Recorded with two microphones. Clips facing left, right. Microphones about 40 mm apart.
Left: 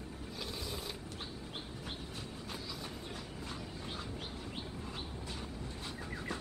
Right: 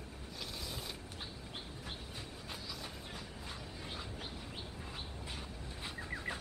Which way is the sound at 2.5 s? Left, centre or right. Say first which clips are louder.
Left 1 dB; centre.